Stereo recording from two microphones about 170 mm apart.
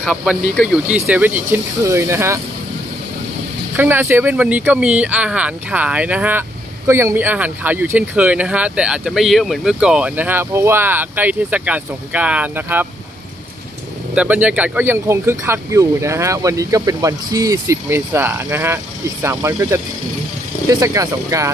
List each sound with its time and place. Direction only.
0.0 s speech: 5° right (ahead or behind)
3.7 s speech: 15° right (ahead or behind)
14.1 s speech: 10° right (ahead or behind)